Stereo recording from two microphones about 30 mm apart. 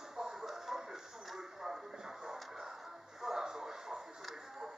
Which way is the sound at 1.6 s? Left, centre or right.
Centre.